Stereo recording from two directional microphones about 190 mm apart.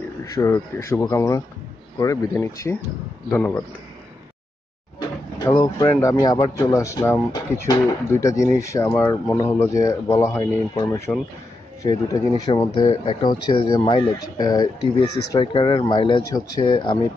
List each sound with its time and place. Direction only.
0.2 s speech: 15° left (ahead or behind)
5.5 s speech: 15° left (ahead or behind)